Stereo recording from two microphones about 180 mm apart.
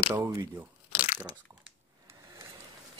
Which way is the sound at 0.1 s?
15° right (ahead or behind).